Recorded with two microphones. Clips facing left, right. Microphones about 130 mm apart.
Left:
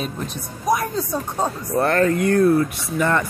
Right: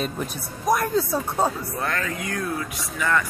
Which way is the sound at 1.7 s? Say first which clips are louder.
Left 10 dB; 40° left (ahead or behind).